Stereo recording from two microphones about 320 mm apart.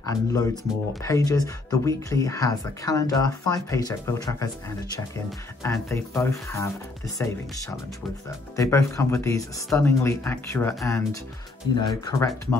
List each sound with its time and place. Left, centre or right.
0.0 s speech: centre
5.6 s speech: centre
8.5 s speech: centre